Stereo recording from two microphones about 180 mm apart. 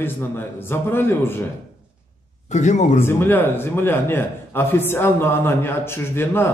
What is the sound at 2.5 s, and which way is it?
Speech, 40° left (ahead or behind).